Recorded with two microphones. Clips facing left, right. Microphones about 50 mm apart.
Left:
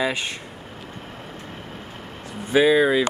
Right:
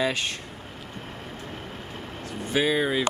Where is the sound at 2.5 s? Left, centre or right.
Centre.